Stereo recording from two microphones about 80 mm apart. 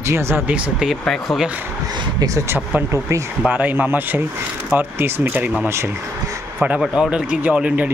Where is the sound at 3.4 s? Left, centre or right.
Right.